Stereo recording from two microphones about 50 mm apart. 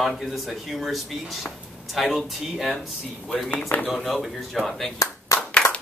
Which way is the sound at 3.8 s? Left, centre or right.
Centre.